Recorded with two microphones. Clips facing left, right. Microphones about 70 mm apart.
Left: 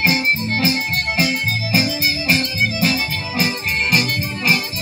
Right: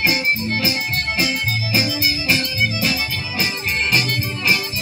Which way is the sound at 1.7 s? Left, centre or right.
Left.